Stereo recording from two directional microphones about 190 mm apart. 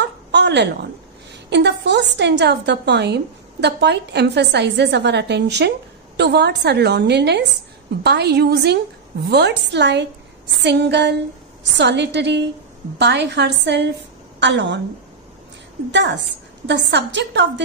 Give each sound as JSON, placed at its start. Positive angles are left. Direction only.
{"t": 0.0, "sound": "a sound", "side_deg": -60}
{"t": 1.3, "sound": "a woman's voice", "side_deg": -65}
{"t": 15.9, "sound": "a woman's voice", "side_deg": -65}